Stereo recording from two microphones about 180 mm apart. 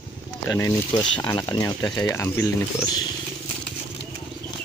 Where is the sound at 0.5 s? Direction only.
20° left (ahead or behind).